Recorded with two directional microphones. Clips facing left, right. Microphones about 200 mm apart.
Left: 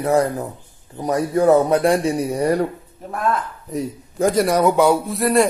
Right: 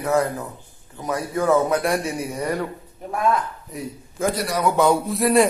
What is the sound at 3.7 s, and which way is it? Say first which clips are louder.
Speech: left 8 dB; 45° left (ahead or behind).